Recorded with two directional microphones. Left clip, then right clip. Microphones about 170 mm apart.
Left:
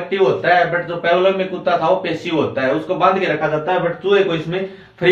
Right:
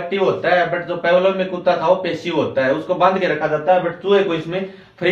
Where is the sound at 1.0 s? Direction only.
20° right (ahead or behind).